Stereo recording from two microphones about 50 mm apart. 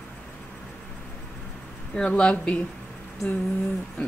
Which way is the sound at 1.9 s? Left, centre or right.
Centre.